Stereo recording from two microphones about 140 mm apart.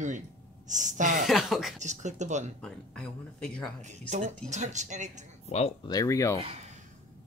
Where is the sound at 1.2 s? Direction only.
Centre (ahead or behind).